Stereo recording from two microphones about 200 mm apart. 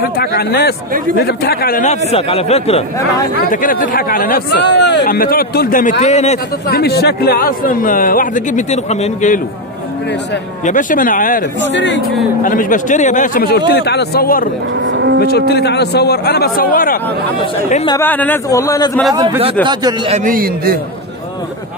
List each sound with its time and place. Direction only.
0.0 s speech: 50° left (ahead or behind); by 2.8 s 30° left (ahead or behind)
3.3 s speech: 45° left (ahead or behind)
6.7 s speech: 55° left (ahead or behind); by 9.4 s 35° left (ahead or behind)
10.6 s speech: 40° left (ahead or behind)
11.6 s speech: 65° left (ahead or behind)
12.4 s speech: 45° left (ahead or behind)
14.9 s cattle: 65° right (ahead or behind)
15.1 s speech: 55° left (ahead or behind)
17.8 s a man's voice: 10° left (ahead or behind)
19.6 s speech: 20° right (ahead or behind)
20.2 s a man's voice: 45° right (ahead or behind)